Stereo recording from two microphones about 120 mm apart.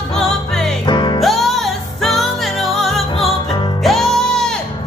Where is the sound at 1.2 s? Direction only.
Centre (ahead or behind).